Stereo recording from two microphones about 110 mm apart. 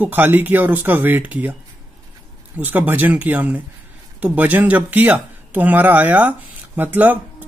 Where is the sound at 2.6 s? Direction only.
15° right (ahead or behind).